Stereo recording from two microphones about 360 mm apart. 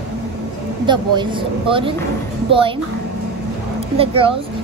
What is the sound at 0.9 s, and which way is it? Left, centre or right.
A child's voice, centre.